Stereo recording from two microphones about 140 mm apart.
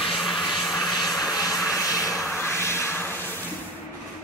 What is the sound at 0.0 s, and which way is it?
Vehicle, centre (ahead or behind).